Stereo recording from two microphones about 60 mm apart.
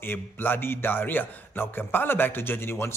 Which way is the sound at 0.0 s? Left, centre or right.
Left.